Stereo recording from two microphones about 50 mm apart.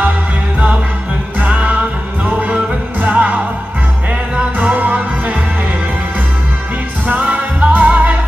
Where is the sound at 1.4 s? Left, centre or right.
Right.